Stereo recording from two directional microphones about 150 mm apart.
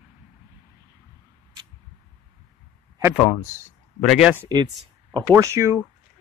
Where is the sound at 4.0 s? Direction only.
Centre (ahead or behind).